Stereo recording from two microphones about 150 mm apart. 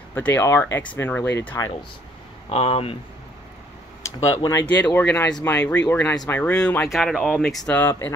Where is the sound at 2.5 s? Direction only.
40° left (ahead or behind).